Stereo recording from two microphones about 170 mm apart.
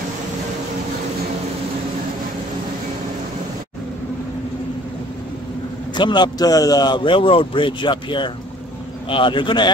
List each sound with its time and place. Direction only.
5.9 s a man's voice: 25° left (ahead or behind)